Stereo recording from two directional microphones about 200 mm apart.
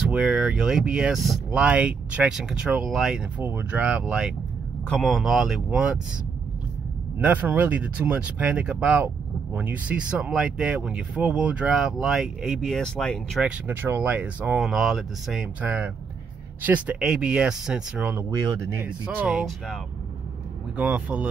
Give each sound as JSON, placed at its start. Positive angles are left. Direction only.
{"t": 0.1, "sound": "speech", "side_deg": -5}
{"t": 7.2, "sound": "speech", "side_deg": -10}
{"t": 13.7, "sound": "speech", "side_deg": -10}
{"t": 18.3, "sound": "speech", "side_deg": -20}
{"t": 18.9, "sound": "speech", "side_deg": -5}